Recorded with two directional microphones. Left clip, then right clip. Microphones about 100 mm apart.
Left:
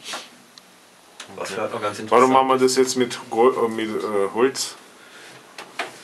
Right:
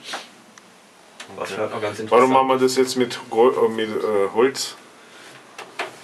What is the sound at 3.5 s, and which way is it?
Speech, 10° right (ahead or behind).